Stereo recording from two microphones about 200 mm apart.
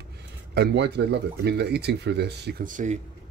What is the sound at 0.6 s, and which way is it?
Speech, 55° right (ahead or behind).